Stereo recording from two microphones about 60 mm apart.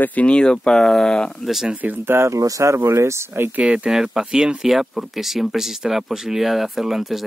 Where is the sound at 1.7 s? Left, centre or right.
Right.